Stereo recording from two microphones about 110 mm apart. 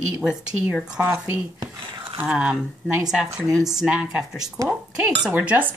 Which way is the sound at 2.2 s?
10° right (ahead or behind).